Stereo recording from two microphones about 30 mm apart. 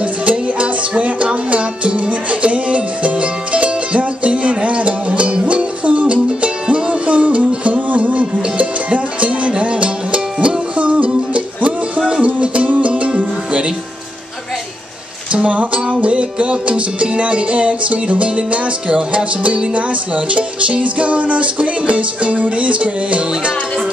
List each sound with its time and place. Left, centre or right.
0.0 s music: right
12.2 s music: right
15.4 s music: right
16.0 s music: right